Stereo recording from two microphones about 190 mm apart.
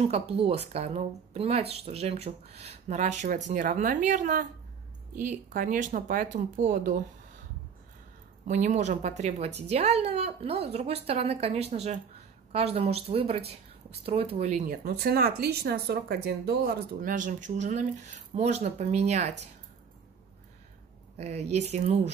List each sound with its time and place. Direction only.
0.0 s speech: 30° right (ahead or behind)
8.5 s speech: 40° right (ahead or behind)
14.7 s speech: 55° right (ahead or behind); by 19.3 s 35° right (ahead or behind)
21.2 s speech: 35° right (ahead or behind)